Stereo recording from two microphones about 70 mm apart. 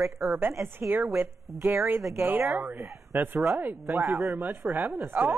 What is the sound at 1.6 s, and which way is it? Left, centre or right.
Speech, right.